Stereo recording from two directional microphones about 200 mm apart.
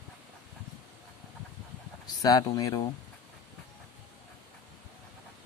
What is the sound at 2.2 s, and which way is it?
Speech, 20° left (ahead or behind).